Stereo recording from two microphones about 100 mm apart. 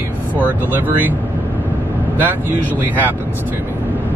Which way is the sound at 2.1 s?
20° right (ahead or behind).